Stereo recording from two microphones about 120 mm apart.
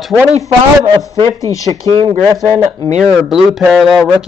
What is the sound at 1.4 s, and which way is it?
Speech, 30° left (ahead or behind).